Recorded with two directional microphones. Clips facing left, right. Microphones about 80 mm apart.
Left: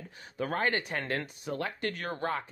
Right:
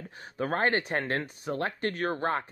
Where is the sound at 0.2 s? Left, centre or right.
Right.